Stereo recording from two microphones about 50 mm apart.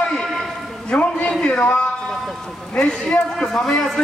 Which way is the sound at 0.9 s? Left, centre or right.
Left.